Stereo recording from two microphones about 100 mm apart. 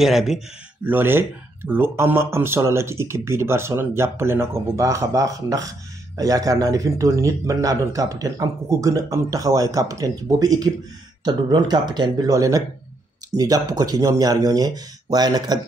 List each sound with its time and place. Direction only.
0.0 s speech: centre (ahead or behind)
0.8 s speech: 20° right (ahead or behind); by 12.3 s 45° right (ahead or behind)
12.3 s speech: 35° right (ahead or behind)